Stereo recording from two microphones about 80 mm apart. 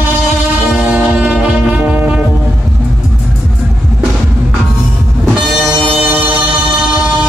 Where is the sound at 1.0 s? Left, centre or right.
Centre.